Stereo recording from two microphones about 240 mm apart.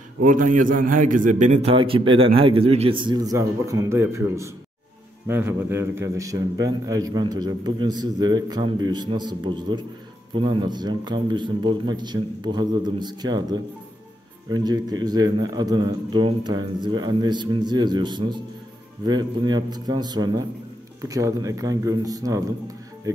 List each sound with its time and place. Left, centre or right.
0.2 s a man's voice: right; by 22.4 s centre